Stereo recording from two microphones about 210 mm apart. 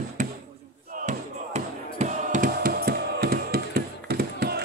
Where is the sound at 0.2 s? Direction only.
35° right (ahead or behind).